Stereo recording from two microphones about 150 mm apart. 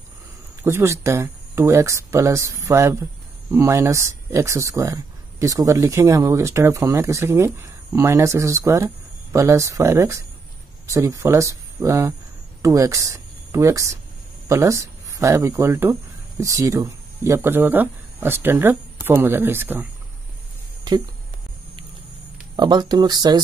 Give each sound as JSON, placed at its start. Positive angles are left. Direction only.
{"t": 0.7, "sound": "speech", "side_deg": -15}
{"t": 22.6, "sound": "speech", "side_deg": -30}